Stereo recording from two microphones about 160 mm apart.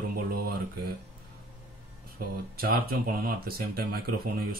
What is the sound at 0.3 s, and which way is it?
Mantra, 70° right (ahead or behind).